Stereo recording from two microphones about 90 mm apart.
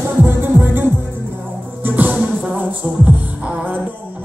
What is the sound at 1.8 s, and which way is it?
Music, 20° right (ahead or behind).